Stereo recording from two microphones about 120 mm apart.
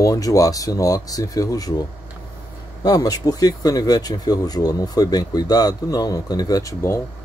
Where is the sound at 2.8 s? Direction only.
35° left (ahead or behind).